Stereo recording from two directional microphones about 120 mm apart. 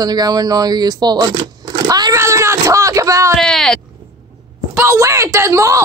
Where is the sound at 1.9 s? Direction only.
35° right (ahead or behind).